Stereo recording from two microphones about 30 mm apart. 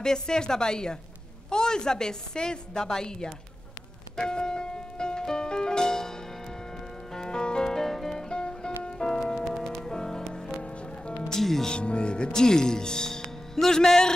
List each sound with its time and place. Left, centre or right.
0.0 s a woman's voice: left
4.2 s music: left
7.2 s music: left
7.7 s music: centre
8.2 s music: left
11.6 s speech: left
12.3 s a woman's voice: left